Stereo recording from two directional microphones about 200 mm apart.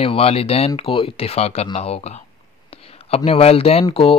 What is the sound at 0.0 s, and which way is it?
Speech, 30° left (ahead or behind).